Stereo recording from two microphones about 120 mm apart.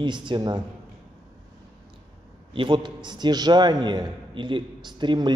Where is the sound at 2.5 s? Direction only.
40° right (ahead or behind).